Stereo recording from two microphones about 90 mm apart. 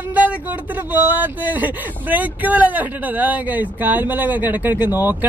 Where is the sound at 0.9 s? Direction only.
20° right (ahead or behind).